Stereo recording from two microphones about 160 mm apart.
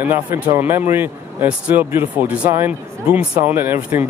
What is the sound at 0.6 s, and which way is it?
Speech, 15° right (ahead or behind).